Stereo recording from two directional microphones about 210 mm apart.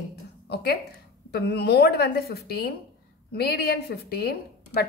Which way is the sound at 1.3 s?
50° left (ahead or behind).